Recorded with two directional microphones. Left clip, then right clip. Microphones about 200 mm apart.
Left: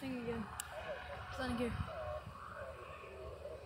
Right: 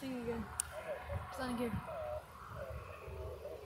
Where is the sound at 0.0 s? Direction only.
55° left (ahead or behind).